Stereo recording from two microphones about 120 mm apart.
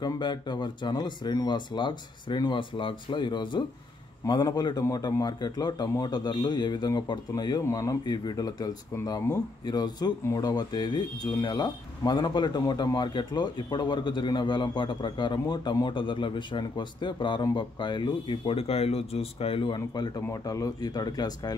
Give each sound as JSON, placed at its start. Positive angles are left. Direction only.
{"t": 0.0, "sound": "speech", "side_deg": 40}
{"t": 20.2, "sound": "speech", "side_deg": 30}